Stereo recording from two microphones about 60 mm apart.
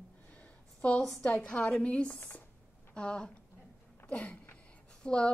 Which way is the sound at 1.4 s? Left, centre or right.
Left.